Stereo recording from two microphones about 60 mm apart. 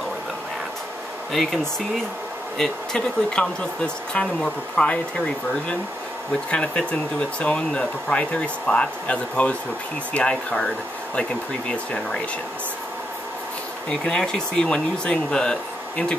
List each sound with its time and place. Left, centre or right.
1.3 s speech: centre
13.8 s speech: centre